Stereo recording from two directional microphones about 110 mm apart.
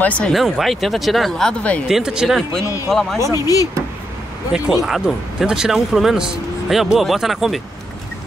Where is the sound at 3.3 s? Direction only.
30° left (ahead or behind).